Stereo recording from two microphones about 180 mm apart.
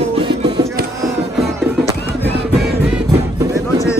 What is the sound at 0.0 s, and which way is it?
Music, 30° right (ahead or behind).